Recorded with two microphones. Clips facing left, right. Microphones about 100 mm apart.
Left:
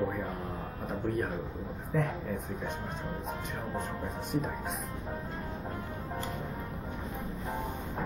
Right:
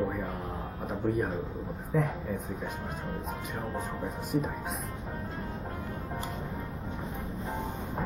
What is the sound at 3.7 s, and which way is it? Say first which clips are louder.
Speech: right 1 dB; centre (ahead or behind).